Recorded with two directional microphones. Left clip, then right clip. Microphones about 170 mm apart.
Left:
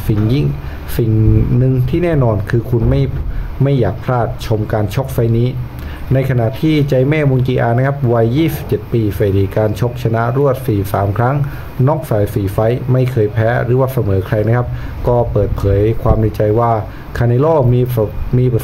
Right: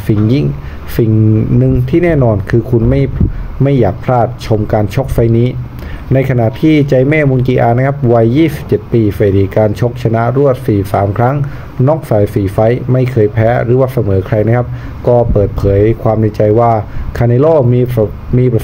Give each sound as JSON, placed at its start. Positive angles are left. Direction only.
{"t": 0.0, "sound": "speech", "side_deg": -10}
{"t": 1.6, "sound": "speech", "side_deg": -10}